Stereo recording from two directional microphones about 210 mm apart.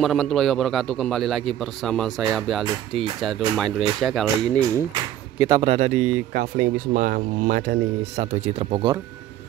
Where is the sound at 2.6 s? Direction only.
20° right (ahead or behind).